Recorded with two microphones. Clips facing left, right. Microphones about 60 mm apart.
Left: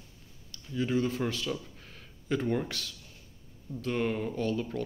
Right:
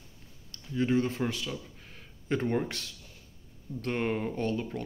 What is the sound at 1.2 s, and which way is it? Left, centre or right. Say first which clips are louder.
Speech: even; centre.